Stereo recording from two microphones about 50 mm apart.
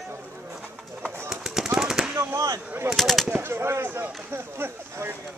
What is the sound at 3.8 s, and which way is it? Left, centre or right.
Run, right.